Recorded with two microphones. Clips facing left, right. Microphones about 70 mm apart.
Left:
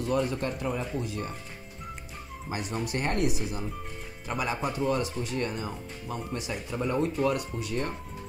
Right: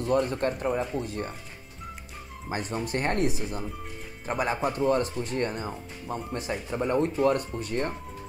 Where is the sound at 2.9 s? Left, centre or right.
Right.